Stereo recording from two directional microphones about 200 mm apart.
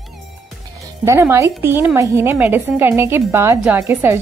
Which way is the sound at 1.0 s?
15° right (ahead or behind).